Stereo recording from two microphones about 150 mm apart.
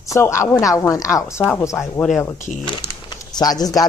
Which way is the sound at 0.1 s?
20° left (ahead or behind).